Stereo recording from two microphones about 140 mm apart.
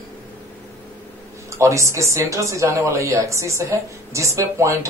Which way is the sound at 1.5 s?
20° right (ahead or behind).